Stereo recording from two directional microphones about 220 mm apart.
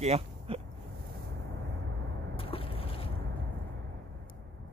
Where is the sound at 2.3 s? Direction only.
25° left (ahead or behind).